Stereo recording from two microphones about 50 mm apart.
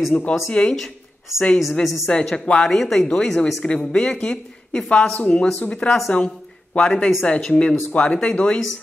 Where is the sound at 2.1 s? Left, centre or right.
Centre.